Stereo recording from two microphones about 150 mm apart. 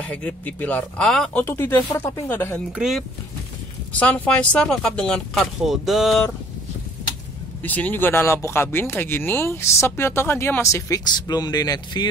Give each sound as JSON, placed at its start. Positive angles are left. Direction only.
{"t": 0.0, "sound": "speech", "side_deg": 10}
{"t": 1.4, "sound": "speech", "side_deg": 15}
{"t": 2.7, "sound": "speech", "side_deg": -5}
{"t": 3.9, "sound": "speech", "side_deg": 10}
{"t": 7.6, "sound": "speech", "side_deg": 10}